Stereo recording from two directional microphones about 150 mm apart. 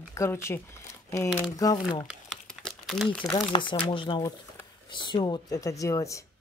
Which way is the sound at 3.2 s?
30° left (ahead or behind).